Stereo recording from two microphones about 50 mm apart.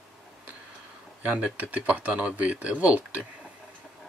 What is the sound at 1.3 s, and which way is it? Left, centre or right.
Speech, right.